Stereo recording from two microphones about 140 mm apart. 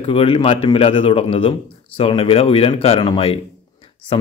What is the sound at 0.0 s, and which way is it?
A man's voice, 45° left (ahead or behind).